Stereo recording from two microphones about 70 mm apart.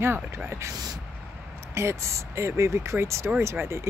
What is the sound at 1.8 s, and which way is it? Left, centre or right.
Speech, right.